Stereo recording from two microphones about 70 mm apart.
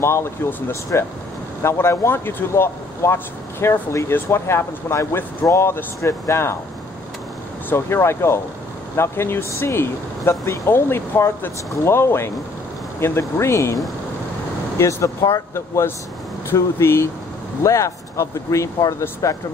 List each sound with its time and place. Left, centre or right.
0.0 s speech: left
0.5 s speech: left
1.6 s speech: left
7.7 s speech: left
14.8 s speech: left